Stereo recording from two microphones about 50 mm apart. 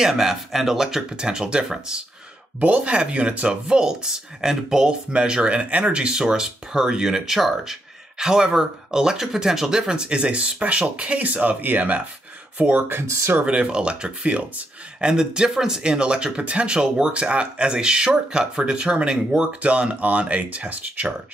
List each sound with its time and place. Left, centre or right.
0.0 s speech: centre
2.6 s speech: right
13.0 s speech: right
13.4 s speech: right